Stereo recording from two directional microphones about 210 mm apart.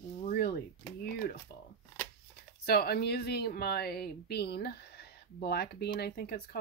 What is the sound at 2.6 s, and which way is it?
A woman's voice, 50° left (ahead or behind).